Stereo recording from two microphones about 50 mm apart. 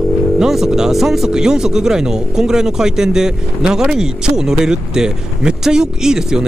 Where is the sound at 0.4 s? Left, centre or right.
Centre.